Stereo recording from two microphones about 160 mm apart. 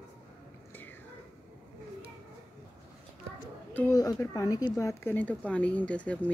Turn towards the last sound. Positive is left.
turn(degrees=10)  # may be behind; listen again after turning